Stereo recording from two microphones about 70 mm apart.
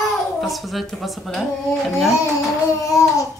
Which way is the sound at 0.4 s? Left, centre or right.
Centre.